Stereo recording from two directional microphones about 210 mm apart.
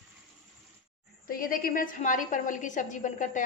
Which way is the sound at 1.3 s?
40° left (ahead or behind).